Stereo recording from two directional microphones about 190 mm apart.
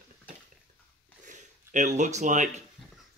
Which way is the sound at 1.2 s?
40° right (ahead or behind).